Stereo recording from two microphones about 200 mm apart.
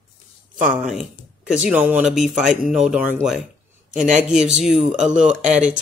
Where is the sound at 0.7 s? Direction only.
Centre (ahead or behind).